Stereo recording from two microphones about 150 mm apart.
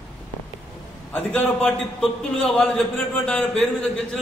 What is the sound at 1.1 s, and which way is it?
A man's voice, 10° left (ahead or behind).